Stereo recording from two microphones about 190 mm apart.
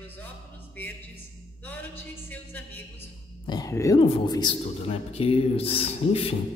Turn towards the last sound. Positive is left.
turn(degrees=30)  # may be behind; listen again after turning